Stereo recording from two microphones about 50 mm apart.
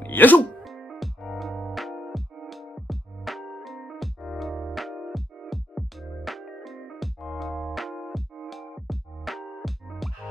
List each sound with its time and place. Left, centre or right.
0.0 s music: left
0.7 s music: centre